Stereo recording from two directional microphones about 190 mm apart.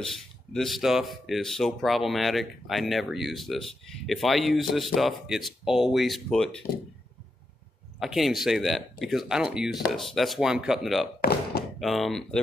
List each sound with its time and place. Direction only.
0.0 s speech: centre (ahead or behind)
8.0 s speech: centre (ahead or behind)
11.1 s thunk: 55° left (ahead or behind)
11.8 s speech: centre (ahead or behind)